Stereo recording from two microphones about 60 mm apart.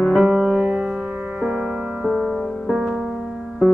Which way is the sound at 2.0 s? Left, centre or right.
Centre.